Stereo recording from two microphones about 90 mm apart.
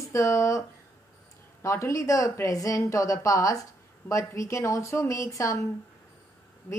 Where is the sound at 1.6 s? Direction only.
35° left (ahead or behind).